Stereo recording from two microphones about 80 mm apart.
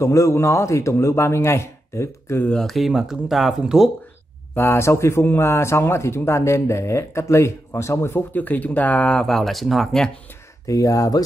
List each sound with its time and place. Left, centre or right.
0.0 s speech: left
2.6 s speech: centre
4.6 s speech: left; by 10.1 s centre
10.7 s speech: left